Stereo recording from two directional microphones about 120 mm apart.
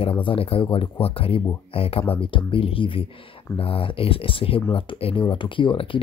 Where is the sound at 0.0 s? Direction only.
50° left (ahead or behind).